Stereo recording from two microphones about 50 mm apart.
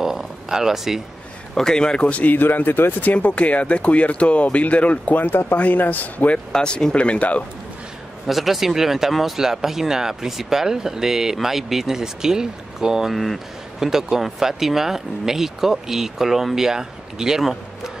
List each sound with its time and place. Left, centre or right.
0.0 s a sound: centre
1.5 s speech: centre; by 2.3 s left
2.3 s speech: left
5.2 s speech: left
5.6 s a man's voice: left
6.3 s speech: centre
8.3 s speech: centre
13.1 s speech: centre